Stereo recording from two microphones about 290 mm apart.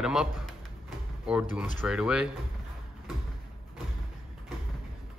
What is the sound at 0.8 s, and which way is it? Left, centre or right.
Sliding door, centre.